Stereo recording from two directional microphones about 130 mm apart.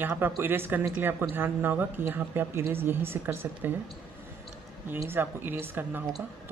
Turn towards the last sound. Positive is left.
turn(degrees=-15)  # may be behind; listen again after turning